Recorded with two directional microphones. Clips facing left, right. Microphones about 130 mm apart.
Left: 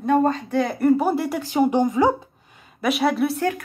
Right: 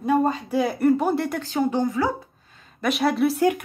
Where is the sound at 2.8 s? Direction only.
Centre (ahead or behind).